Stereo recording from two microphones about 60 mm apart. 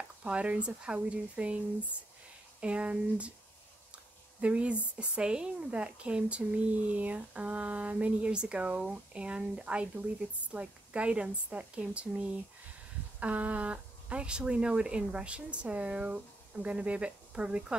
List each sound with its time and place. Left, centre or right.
0.2 s speech: right
4.4 s speech: centre